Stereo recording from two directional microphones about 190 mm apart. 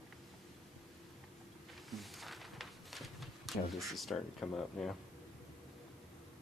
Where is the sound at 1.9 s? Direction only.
Centre (ahead or behind).